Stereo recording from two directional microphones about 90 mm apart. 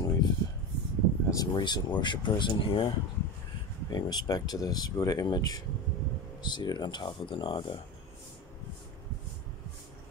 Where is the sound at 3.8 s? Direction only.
50° left (ahead or behind).